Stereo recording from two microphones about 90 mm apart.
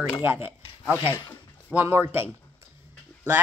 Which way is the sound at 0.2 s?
25° right (ahead or behind).